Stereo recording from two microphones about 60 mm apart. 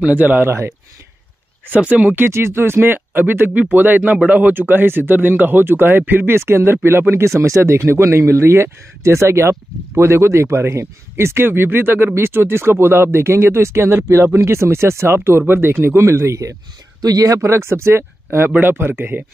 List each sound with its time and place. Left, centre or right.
0.0 s speech: right
1.8 s speech: right
2.1 s speech: right
17.0 s speech: right